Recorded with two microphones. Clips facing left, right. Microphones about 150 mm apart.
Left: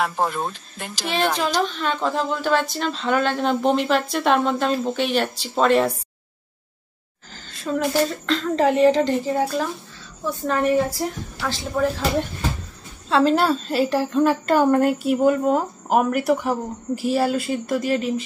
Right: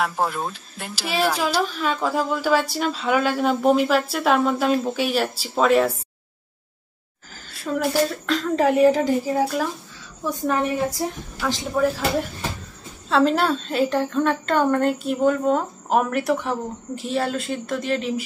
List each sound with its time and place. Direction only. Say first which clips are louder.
0.0 s speech: left 1 dB; centre (ahead or behind)
7.3 s speech: left 1 dB; 5° right (ahead or behind)
10.2 s a woman's voice: left 1 dB; 10° right (ahead or behind)
11.7 s a woman's voice: even; 5° right (ahead or behind)